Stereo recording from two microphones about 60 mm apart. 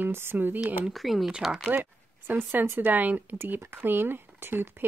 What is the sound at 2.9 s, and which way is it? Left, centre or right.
Speech, right.